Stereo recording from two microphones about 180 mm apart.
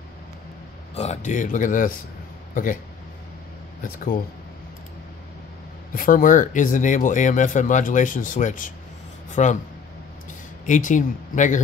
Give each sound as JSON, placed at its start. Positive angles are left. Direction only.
{"t": 0.9, "sound": "speech", "side_deg": 40}
{"t": 3.8, "sound": "speech", "side_deg": 50}
{"t": 5.9, "sound": "speech", "side_deg": 50}
{"t": 10.7, "sound": "speech", "side_deg": 45}